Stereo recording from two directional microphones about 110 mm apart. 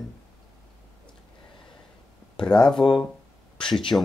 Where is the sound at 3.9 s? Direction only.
25° left (ahead or behind).